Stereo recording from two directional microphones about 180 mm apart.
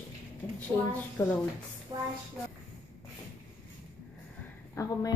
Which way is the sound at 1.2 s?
15° left (ahead or behind).